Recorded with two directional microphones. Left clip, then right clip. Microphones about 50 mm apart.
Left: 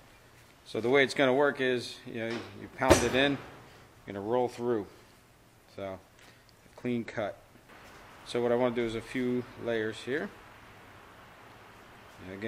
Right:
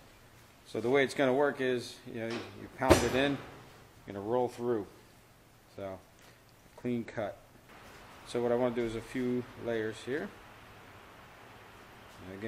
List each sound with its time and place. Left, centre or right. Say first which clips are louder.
0.7 s speech: left 3 dB; left
3.3 s a sound: left 1 dB; centre
4.1 s speech: left 2 dB; left